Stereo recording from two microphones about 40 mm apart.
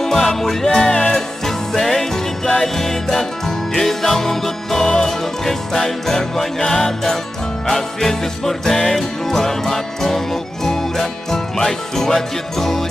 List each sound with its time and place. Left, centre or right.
0.0 s music: centre
0.7 s speech: centre
1.4 s music: centre